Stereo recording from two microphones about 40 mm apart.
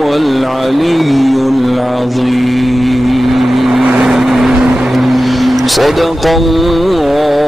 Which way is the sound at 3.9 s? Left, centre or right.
Centre.